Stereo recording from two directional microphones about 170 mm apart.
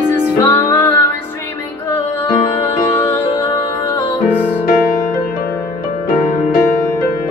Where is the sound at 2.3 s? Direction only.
20° left (ahead or behind).